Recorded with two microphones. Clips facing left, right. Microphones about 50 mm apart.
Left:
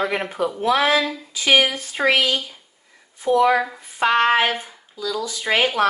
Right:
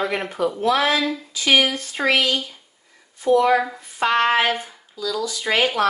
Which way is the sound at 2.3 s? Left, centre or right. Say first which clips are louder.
Even; centre.